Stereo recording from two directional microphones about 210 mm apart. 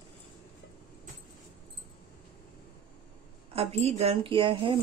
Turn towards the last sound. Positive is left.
turn(degrees=-25)  # may be behind; listen again after turning